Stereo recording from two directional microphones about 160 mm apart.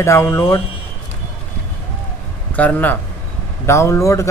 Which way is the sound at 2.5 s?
10° left (ahead or behind).